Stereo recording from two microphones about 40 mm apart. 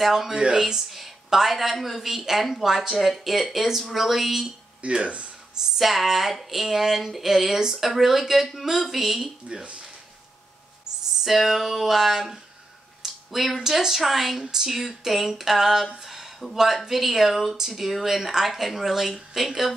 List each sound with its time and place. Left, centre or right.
0.0 s speech: centre
0.3 s speech: right
0.6 s a woman's voice: centre
4.8 s speech: right
5.8 s a woman's voice: centre
9.5 s speech: right
11.2 s a woman's voice: centre